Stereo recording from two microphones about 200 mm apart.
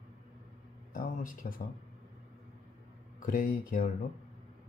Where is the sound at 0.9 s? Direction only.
45° left (ahead or behind).